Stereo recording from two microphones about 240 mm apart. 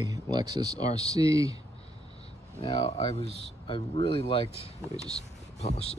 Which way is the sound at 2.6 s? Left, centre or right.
Left.